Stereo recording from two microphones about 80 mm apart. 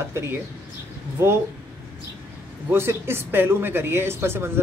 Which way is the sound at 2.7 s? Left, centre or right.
Right.